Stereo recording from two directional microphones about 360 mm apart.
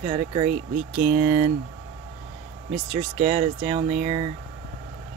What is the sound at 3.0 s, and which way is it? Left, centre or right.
Speech, centre.